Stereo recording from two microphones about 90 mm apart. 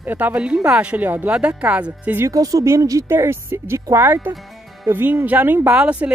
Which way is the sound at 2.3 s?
40° right (ahead or behind).